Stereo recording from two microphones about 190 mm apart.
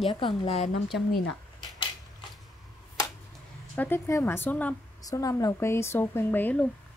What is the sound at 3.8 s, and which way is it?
Speech, 15° left (ahead or behind).